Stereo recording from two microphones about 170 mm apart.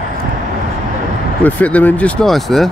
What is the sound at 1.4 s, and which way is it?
Speech, 10° left (ahead or behind).